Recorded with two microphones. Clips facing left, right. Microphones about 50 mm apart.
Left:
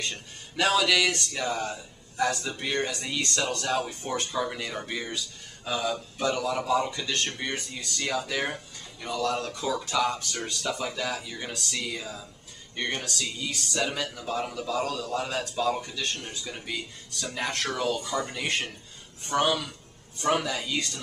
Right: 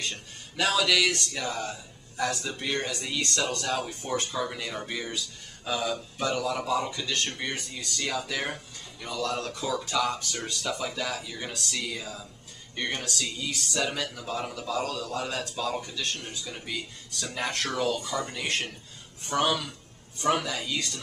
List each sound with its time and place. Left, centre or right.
0.1 s speech: centre